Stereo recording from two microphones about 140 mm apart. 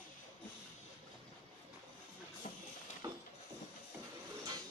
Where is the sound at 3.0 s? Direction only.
25° right (ahead or behind).